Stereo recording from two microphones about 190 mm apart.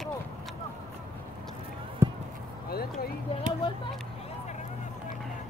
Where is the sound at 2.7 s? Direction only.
50° left (ahead or behind).